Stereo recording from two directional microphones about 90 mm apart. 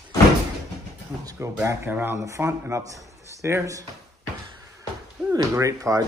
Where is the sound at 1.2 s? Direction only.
45° right (ahead or behind).